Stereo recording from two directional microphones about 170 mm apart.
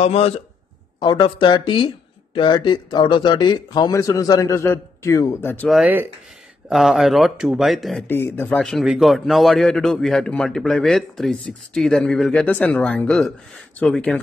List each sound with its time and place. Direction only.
0.0 s a man's voice: 35° left (ahead or behind); by 5.7 s 15° left (ahead or behind)
5.7 s a man's voice: 5° right (ahead or behind)
8.1 s a man's voice: 15° left (ahead or behind)